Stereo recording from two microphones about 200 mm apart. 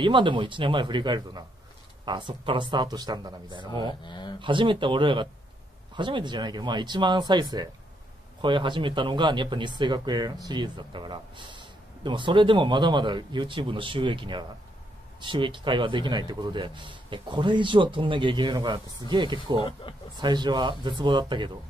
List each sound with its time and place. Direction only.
0.0 s speech: 25° right (ahead or behind)
4.0 s speech: 25° left (ahead or behind)
4.4 s speech: 25° right (ahead or behind)
19.6 s speech: 25° left (ahead or behind)
20.2 s speech: 20° right (ahead or behind)